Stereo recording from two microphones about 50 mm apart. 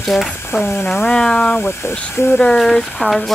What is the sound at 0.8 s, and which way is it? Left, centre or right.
Speech, centre.